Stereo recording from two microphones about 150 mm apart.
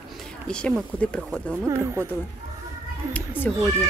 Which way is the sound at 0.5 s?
5° left (ahead or behind).